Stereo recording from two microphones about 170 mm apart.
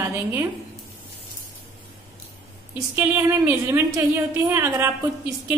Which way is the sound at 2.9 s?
15° right (ahead or behind).